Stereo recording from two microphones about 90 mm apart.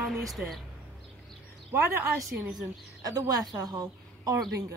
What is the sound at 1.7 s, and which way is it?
Speech, 30° right (ahead or behind).